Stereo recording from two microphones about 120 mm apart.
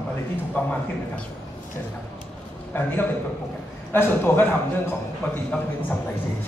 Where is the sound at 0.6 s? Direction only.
15° left (ahead or behind).